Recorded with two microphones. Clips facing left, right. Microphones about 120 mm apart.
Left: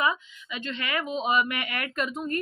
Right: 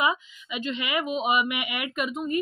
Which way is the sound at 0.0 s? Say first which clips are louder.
Right 1 dB; 15° right (ahead or behind).